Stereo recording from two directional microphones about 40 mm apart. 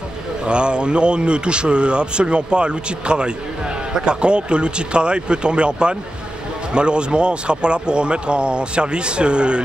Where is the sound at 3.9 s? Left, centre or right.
Centre.